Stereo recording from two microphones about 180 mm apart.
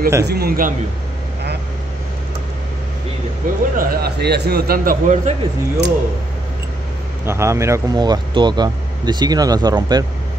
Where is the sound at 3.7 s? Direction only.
60° right (ahead or behind).